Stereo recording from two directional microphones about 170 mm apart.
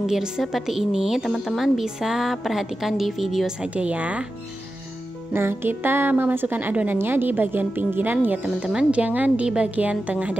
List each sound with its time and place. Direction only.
0.0 s a woman's voice: 5° right (ahead or behind)
5.3 s speech: 15° right (ahead or behind)